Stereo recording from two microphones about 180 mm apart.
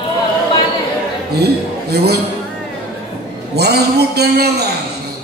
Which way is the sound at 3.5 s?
65° right (ahead or behind).